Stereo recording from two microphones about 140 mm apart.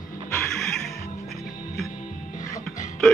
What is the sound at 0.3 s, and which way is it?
Music, 5° left (ahead or behind).